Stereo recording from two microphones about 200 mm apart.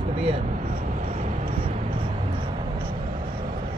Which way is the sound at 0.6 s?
45° right (ahead or behind).